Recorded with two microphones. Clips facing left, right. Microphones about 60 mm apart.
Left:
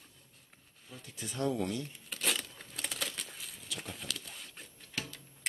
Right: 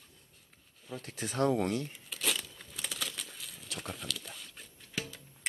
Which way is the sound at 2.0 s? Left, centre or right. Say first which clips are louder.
Even; centre.